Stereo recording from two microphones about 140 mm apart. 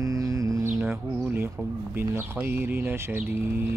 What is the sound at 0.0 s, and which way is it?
Music, 25° right (ahead or behind).